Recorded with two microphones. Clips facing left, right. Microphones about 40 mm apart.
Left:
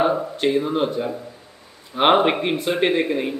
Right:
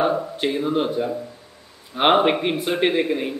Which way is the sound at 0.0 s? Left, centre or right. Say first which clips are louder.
Left 2 dB; centre.